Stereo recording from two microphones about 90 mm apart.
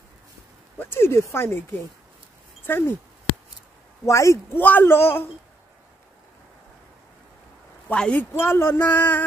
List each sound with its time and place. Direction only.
0.7 s speech: 25° left (ahead or behind)
4.0 s speech: 35° left (ahead or behind)
4.6 s speech: 20° left (ahead or behind)
7.9 s speech: 10° left (ahead or behind)
8.3 s speech: 25° left (ahead or behind)